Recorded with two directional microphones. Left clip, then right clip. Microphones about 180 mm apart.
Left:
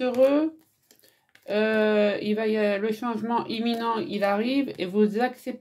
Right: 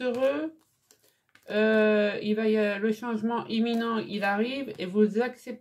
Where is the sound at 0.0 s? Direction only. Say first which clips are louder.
Left 6 dB; 40° left (ahead or behind).